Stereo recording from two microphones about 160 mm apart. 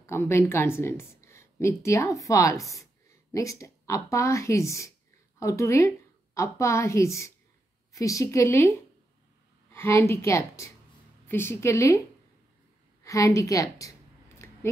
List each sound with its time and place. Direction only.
0.0 s a woman's voice: 15° left (ahead or behind)
13.0 s a woman's voice: 20° left (ahead or behind)